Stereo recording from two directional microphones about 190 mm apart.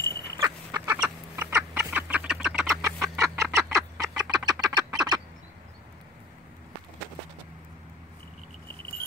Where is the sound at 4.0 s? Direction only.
20° right (ahead or behind).